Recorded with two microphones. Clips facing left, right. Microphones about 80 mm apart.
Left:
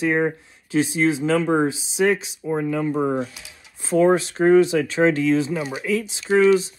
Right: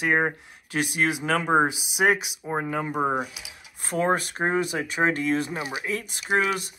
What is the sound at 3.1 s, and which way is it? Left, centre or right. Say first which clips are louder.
Speech: left 3 dB; centre.